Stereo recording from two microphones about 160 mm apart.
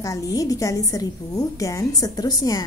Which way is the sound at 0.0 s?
20° left (ahead or behind).